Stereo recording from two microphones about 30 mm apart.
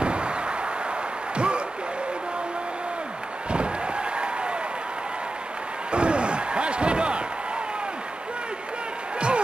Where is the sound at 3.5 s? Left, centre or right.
Right.